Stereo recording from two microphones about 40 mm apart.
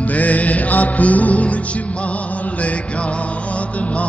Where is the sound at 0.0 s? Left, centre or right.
Left.